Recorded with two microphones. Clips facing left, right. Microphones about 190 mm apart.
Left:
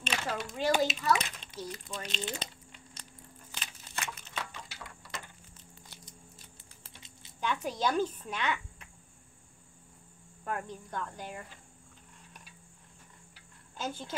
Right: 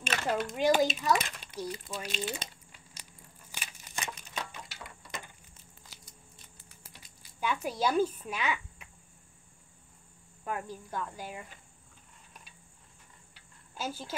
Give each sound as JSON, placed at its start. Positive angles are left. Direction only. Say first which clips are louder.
{"t": 0.0, "sound": "a sound", "louder": "right 4 dB", "side_deg": -5}
{"t": 0.7, "sound": "speech", "louder": "right 1 dB", "side_deg": -5}
{"t": 3.5, "sound": "crushing", "louder": "even", "side_deg": -15}
{"t": 6.8, "sound": "a sound", "louder": "left 2 dB", "side_deg": 25}
{"t": 7.3, "sound": "speech", "louder": "right 1 dB", "side_deg": -10}
{"t": 10.4, "sound": "speech", "louder": "even", "side_deg": -5}
{"t": 13.7, "sound": "speech", "louder": "even", "side_deg": -5}